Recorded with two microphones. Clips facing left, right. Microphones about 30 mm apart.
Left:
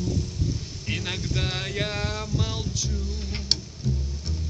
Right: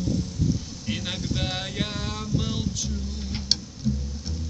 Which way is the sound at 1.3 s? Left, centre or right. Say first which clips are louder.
Left 1 dB; centre.